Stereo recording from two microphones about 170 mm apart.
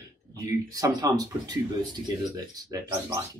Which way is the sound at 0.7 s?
20° right (ahead or behind).